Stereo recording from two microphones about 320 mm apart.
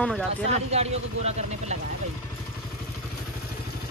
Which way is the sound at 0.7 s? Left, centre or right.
Centre.